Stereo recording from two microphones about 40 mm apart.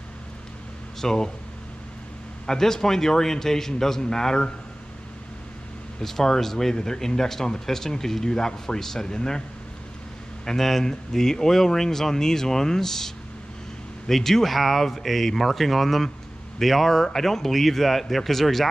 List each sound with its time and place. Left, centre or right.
1.0 s speech: centre
2.4 s speech: centre
5.9 s speech: centre
10.4 s speech: centre